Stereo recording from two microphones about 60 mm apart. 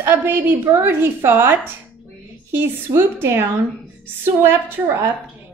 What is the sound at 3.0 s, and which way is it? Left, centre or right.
A woman's voice, right.